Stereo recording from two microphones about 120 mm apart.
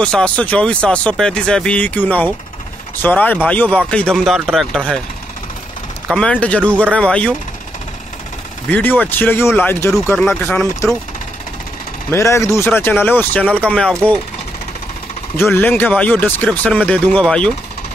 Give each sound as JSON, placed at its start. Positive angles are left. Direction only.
{"t": 0.0, "sound": "speech", "side_deg": 10}
{"t": 6.1, "sound": "speech", "side_deg": 10}
{"t": 8.6, "sound": "speech", "side_deg": 15}
{"t": 12.1, "sound": "speech", "side_deg": 25}
{"t": 15.3, "sound": "speech", "side_deg": 20}